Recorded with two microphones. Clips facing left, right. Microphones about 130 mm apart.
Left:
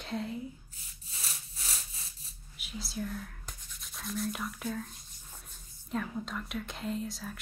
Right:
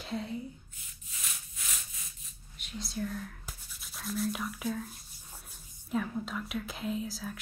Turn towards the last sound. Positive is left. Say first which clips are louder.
# right 1 dB
turn(degrees=0)  # may be behind; listen again after turning